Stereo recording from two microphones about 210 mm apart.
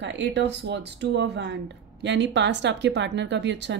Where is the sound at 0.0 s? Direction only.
55° right (ahead or behind).